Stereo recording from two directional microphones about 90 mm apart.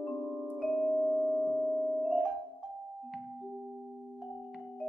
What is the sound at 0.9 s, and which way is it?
Singing bowl, 25° right (ahead or behind).